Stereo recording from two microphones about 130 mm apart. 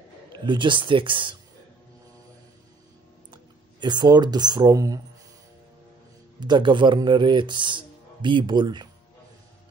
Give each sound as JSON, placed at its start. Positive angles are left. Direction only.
{"t": 0.5, "sound": "speech", "side_deg": -40}
{"t": 3.8, "sound": "speech", "side_deg": -35}
{"t": 6.4, "sound": "speech", "side_deg": -35}